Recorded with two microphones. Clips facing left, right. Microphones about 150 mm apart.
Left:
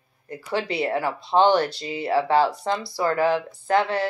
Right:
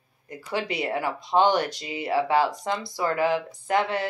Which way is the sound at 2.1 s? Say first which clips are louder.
Left 2 dB; 35° left (ahead or behind).